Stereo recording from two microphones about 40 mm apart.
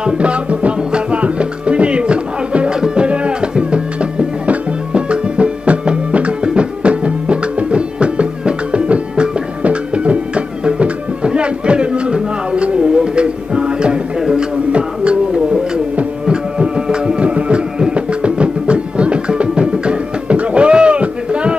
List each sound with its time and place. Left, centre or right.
0.0 s music: right